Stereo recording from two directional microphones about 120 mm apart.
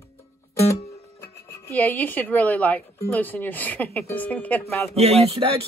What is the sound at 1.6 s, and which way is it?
A woman's voice, 15° left (ahead or behind).